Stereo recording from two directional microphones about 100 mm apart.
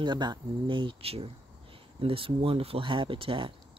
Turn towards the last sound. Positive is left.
turn(degrees=-60)  # may be behind; listen again after turning